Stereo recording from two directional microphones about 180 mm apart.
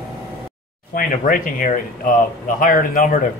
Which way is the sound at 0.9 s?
50° left (ahead or behind).